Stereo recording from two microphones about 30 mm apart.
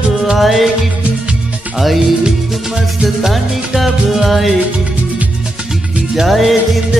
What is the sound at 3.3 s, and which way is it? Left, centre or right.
Music, centre.